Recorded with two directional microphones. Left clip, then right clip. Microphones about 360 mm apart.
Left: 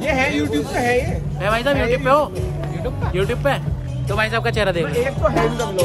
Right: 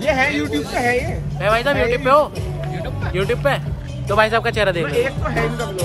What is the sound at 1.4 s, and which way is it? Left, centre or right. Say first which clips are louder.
Speech: right 2 dB; centre.